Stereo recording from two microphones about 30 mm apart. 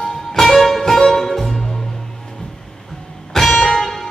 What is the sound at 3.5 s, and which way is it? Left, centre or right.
Music, centre.